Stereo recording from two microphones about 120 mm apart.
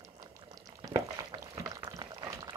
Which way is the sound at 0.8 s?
35° right (ahead or behind).